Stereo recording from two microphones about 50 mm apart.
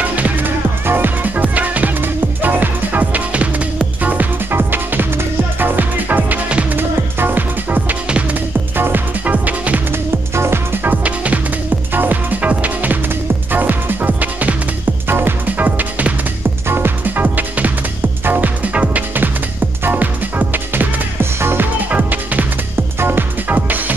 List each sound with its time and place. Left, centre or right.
0.0 s music: right
0.8 s music: right
9.2 s music: right
10.3 s music: right
10.8 s music: right
11.9 s music: right
15.0 s music: right
15.4 s music: right
16.6 s music: right
17.0 s music: right
21.9 s music: right